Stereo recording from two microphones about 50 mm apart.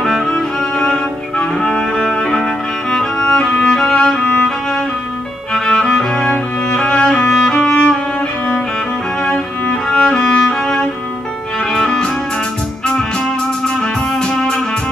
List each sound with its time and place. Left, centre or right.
0.0 s cello: centre
1.6 s music: centre
5.5 s music: centre
6.3 s music: left
9.2 s music: centre
14.3 s music: centre